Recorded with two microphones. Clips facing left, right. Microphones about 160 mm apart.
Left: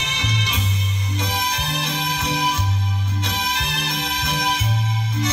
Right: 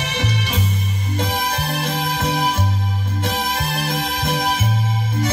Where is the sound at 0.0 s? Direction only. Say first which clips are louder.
Right 4 dB; 50° right (ahead or behind).